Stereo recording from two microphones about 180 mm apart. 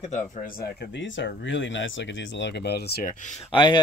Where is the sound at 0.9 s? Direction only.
85° left; by 3.5 s 40° left (ahead or behind).